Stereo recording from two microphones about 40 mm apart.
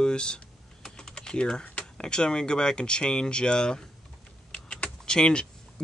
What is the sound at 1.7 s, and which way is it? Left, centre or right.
Speech, left.